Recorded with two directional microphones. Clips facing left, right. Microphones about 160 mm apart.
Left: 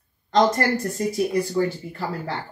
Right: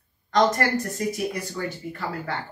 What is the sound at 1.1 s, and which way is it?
Speech, 30° left (ahead or behind).